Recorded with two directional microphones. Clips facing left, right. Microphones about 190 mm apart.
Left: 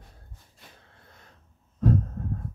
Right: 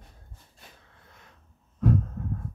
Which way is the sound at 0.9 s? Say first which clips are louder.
Left 1 dB; 40° left (ahead or behind).